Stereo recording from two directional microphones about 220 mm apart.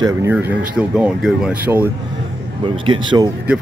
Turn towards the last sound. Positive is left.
turn(degrees=-20)  # may be behind; listen again after turning